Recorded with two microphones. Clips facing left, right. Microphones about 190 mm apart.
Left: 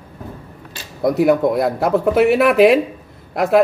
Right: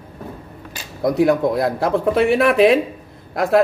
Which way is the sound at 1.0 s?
Centre (ahead or behind).